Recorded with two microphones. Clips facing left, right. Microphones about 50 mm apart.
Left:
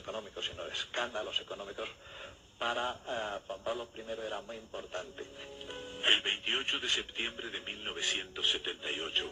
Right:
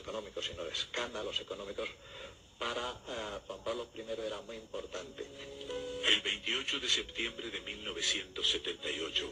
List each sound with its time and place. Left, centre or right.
0.4 s a man's voice: left